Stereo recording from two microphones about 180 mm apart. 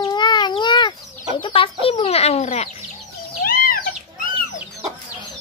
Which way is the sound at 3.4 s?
55° left (ahead or behind).